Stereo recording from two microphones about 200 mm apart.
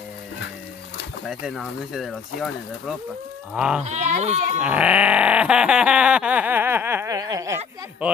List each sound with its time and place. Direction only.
1.2 s speech: centre (ahead or behind)
3.5 s speech: 5° right (ahead or behind)
3.8 s speech: 35° right (ahead or behind)
4.6 s sheep: 5° right (ahead or behind)